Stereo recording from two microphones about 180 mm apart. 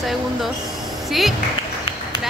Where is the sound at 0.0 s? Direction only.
Centre (ahead or behind).